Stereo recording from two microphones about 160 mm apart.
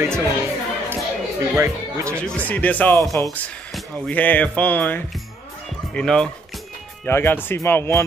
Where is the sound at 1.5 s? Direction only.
20° right (ahead or behind).